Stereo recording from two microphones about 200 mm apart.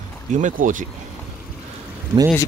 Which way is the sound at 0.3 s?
40° right (ahead or behind).